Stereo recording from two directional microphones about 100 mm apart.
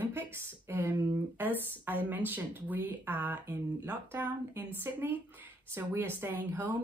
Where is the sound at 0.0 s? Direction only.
25° right (ahead or behind).